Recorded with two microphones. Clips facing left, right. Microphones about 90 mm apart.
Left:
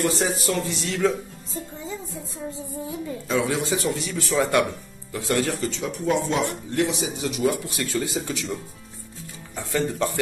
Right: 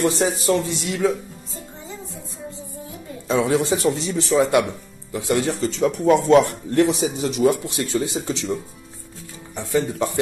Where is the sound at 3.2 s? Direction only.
35° right (ahead or behind).